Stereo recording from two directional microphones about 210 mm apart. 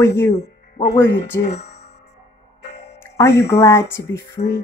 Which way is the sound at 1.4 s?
30° left (ahead or behind).